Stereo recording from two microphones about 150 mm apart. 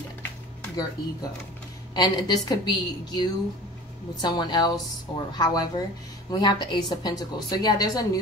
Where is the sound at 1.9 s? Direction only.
25° left (ahead or behind).